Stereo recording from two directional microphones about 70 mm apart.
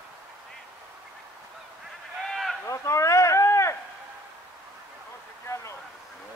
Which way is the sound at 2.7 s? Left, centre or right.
Left.